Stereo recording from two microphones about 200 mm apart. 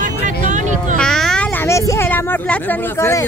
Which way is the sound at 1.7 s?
15° left (ahead or behind).